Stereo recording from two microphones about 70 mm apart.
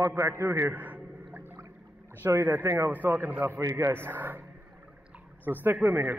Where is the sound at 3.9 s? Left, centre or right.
Right.